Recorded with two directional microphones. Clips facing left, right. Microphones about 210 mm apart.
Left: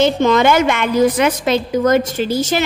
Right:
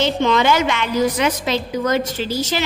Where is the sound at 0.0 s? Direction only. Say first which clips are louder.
Left 4 dB; 45° left (ahead or behind).